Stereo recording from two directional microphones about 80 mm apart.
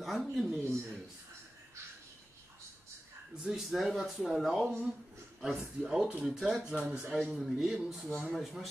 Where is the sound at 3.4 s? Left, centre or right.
Centre.